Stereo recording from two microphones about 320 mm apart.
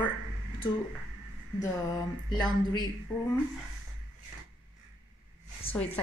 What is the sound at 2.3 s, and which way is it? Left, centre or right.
Speech, centre.